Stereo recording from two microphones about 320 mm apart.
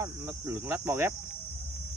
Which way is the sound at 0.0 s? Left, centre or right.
Centre.